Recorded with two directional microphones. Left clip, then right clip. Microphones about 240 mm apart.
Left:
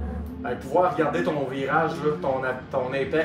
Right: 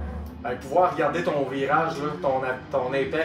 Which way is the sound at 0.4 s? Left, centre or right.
Centre.